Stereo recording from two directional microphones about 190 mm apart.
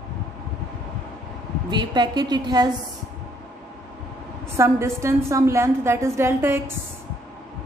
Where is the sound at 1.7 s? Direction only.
25° right (ahead or behind).